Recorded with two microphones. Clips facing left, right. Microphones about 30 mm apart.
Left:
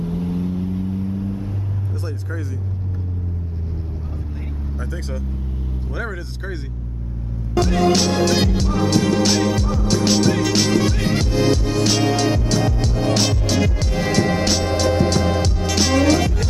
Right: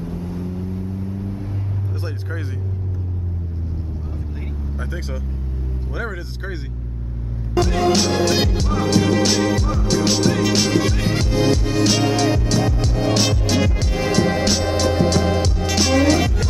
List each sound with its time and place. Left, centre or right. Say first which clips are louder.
0.0 s vehicle: left 4 dB; left
5.9 s speech: right 1 dB; centre
7.5 s music: even; centre